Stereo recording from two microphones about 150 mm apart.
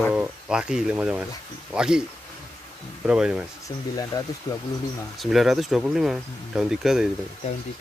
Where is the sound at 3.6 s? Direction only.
20° left (ahead or behind).